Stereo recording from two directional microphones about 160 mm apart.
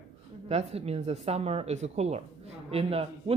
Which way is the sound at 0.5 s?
40° right (ahead or behind).